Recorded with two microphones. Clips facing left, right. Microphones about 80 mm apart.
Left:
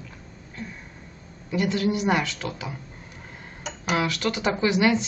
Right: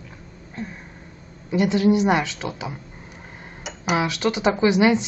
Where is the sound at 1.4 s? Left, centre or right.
Right.